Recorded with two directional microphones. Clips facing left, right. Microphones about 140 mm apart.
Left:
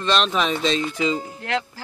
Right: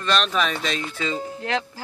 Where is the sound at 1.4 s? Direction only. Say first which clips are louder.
Even; 20° right (ahead or behind).